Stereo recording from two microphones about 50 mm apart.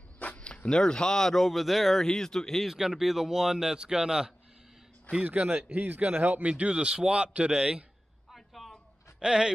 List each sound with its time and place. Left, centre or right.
0.2 s speech: left; by 2.6 s centre
2.6 s speech: centre
5.2 s speech: right
6.6 s speech: centre
8.3 s a sound: centre
9.2 s speech: centre